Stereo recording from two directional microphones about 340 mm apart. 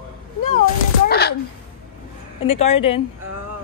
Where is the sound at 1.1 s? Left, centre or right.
Left.